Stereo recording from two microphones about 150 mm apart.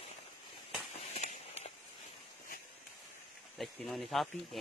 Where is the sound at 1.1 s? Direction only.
45° left (ahead or behind).